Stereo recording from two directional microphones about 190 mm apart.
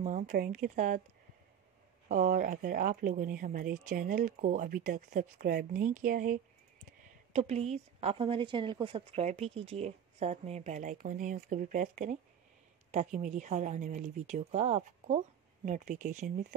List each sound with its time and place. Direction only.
0.0 s speech: 40° right (ahead or behind)
2.0 s a woman's voice: 40° right (ahead or behind)